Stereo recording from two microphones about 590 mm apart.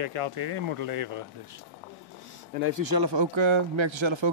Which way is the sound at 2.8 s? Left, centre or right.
Right.